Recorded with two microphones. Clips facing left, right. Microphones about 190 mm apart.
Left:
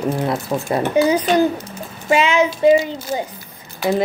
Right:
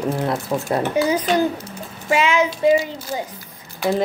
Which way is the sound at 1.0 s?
20° left (ahead or behind).